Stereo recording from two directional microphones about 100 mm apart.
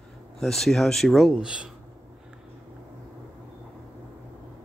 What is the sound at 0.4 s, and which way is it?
Speech, 5° left (ahead or behind).